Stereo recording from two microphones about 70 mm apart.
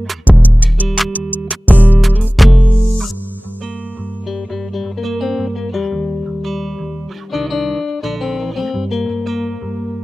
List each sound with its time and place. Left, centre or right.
0.3 s music: left
0.8 s music: centre
1.7 s music: right
2.4 s music: centre
4.7 s music: centre